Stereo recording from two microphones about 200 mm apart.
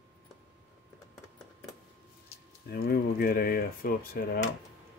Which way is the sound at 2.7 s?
50° left (ahead or behind).